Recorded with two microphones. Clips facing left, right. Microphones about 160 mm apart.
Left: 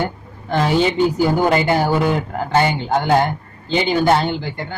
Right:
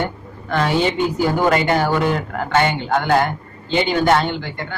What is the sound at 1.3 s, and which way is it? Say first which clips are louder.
Speech: left 1 dB; 30° left (ahead or behind).